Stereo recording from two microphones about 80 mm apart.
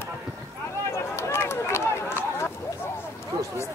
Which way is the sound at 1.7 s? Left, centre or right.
Left.